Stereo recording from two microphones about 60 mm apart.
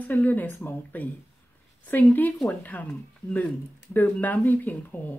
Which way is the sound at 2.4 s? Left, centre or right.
Left.